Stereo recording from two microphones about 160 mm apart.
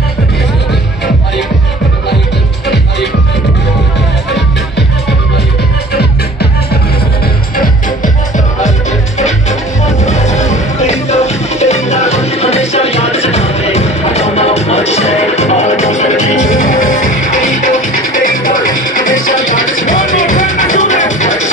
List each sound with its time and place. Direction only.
7.5 s music: 60° left (ahead or behind)
9.2 s music: 45° left (ahead or behind)
19.8 s music: 50° left (ahead or behind)